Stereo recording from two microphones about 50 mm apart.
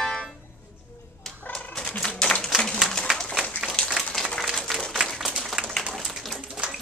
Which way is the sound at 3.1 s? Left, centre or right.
Centre.